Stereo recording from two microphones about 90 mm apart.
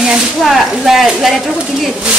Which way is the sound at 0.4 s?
Centre (ahead or behind).